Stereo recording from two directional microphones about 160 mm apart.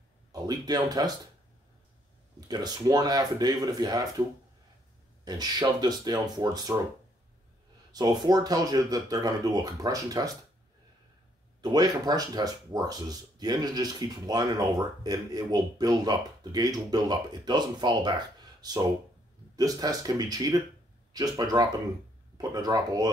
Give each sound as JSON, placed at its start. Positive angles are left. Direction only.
{"t": 0.3, "sound": "speech", "side_deg": -25}
{"t": 2.4, "sound": "speech", "side_deg": -25}
{"t": 5.2, "sound": "speech", "side_deg": -25}
{"t": 7.9, "sound": "speech", "side_deg": -25}
{"t": 11.6, "sound": "speech", "side_deg": -25}